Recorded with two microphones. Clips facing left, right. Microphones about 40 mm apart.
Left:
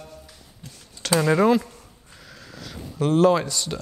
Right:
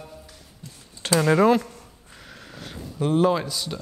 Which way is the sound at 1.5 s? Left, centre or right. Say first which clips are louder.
Even; right.